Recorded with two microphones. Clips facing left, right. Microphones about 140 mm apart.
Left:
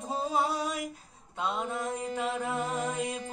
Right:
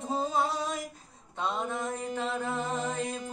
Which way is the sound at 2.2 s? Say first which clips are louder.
Left 1 dB; 10° left (ahead or behind).